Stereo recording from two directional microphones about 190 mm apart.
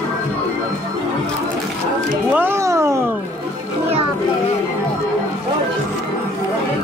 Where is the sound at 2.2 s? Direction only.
10° right (ahead or behind).